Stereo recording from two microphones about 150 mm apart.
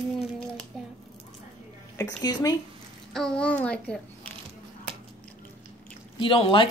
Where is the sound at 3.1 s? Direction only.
5° left (ahead or behind).